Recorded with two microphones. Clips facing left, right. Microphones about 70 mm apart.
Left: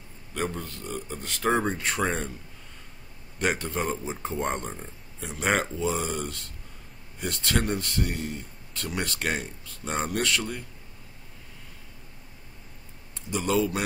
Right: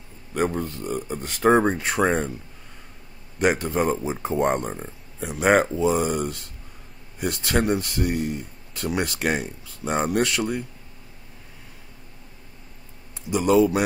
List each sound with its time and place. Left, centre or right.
0.3 s speech: right
3.3 s speech: centre
13.3 s speech: centre